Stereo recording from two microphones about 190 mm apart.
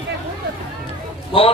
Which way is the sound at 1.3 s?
25° left (ahead or behind).